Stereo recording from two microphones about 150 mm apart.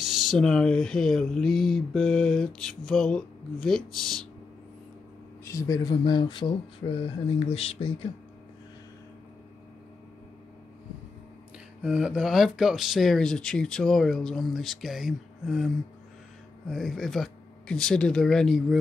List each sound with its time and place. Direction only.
0.0 s speech: centre (ahead or behind)
5.4 s speech: 20° left (ahead or behind); by 8.1 s 40° left (ahead or behind)
11.8 s speech: 5° right (ahead or behind)